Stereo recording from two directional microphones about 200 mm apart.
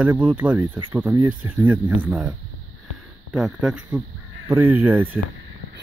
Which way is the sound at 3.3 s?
Centre (ahead or behind).